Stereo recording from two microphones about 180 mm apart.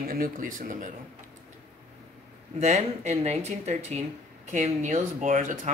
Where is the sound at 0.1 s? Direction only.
50° right (ahead or behind).